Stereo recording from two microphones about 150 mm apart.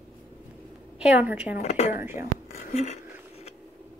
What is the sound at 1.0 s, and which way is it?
Speech, 10° right (ahead or behind).